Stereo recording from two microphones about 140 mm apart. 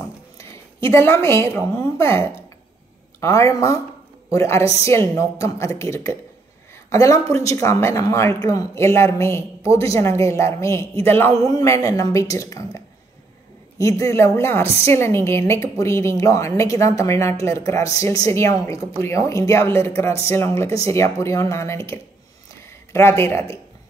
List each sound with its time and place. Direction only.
0.4 s a woman's voice: 20° left (ahead or behind)